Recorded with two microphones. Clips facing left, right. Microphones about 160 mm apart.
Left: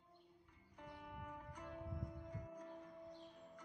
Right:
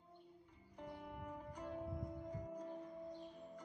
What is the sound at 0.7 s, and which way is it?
Music, 30° right (ahead or behind).